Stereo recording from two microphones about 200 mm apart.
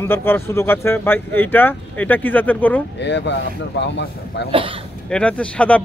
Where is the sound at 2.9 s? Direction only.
60° left (ahead or behind).